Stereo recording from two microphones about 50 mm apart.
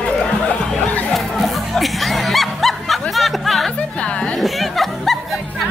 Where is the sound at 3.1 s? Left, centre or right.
Centre.